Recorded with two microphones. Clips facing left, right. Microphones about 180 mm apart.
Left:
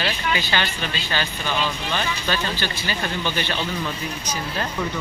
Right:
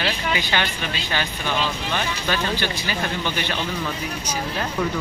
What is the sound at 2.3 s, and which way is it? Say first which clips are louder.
Speech: right 4 dB; 15° right (ahead or behind).